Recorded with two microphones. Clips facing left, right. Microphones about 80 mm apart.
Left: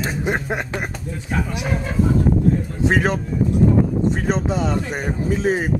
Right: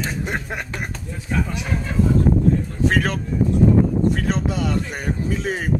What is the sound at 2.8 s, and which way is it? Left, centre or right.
Speech, centre.